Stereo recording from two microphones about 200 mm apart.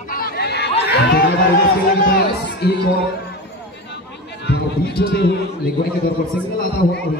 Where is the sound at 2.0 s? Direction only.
50° left (ahead or behind).